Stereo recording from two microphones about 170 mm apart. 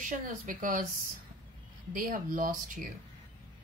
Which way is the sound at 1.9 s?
55° right (ahead or behind).